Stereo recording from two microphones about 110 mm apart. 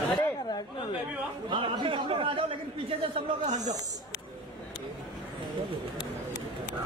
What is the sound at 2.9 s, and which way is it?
Speech, 75° right (ahead or behind).